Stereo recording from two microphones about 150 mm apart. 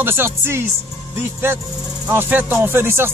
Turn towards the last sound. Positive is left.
turn(degrees=-15)  # may be behind; listen again after turning